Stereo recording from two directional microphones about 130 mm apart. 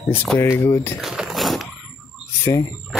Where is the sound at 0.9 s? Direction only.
5° right (ahead or behind).